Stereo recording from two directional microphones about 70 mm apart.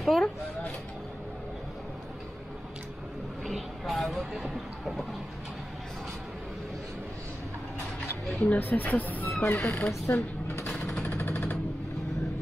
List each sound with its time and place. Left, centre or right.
0.0 s a sound: centre
3.4 s vehicle: centre
8.4 s speech: left
10.7 s jackhammer: centre